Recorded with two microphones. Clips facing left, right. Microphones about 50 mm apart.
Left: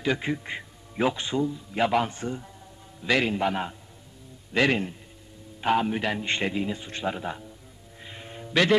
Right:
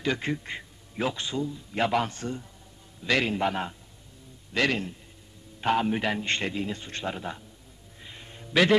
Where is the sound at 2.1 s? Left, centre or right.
Centre.